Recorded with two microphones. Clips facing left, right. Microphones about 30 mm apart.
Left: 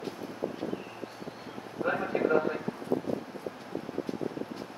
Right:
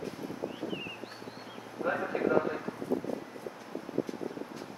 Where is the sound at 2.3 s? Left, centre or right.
Left.